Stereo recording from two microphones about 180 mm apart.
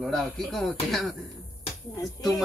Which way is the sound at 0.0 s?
Centre (ahead or behind).